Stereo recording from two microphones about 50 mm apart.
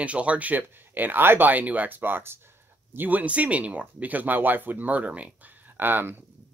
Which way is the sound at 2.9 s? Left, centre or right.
Right.